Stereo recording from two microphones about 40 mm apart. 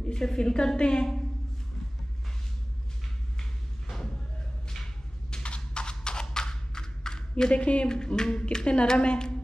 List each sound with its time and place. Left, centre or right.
0.1 s a woman's voice: centre
5.3 s clip-clop: left
7.5 s speech: left
7.9 s a woman's voice: centre